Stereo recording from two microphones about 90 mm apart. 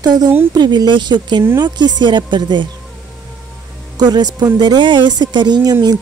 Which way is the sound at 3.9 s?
50° right (ahead or behind).